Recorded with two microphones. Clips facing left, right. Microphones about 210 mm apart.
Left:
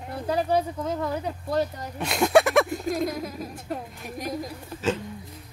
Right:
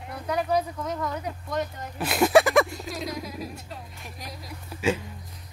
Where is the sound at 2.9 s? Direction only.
50° left (ahead or behind).